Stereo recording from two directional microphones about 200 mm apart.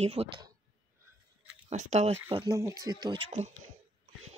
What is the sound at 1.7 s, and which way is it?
Speech, 35° right (ahead or behind).